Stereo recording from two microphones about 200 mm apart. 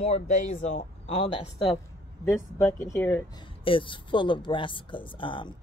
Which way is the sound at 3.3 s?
25° left (ahead or behind).